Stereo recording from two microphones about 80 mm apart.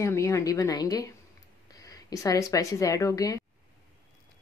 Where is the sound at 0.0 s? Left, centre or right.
Left.